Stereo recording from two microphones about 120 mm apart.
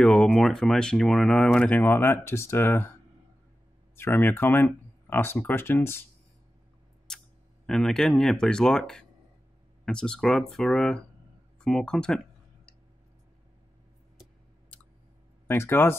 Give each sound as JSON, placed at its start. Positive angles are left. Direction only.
{"t": 0.0, "sound": "speech", "side_deg": 10}
{"t": 3.9, "sound": "speech", "side_deg": 20}
{"t": 7.1, "sound": "a sound", "side_deg": 5}
{"t": 7.6, "sound": "speech", "side_deg": 5}
{"t": 15.4, "sound": "speech", "side_deg": 20}